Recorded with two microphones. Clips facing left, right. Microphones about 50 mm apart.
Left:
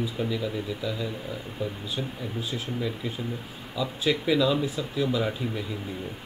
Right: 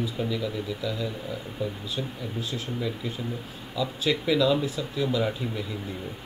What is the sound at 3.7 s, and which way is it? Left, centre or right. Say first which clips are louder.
Speech: even; centre.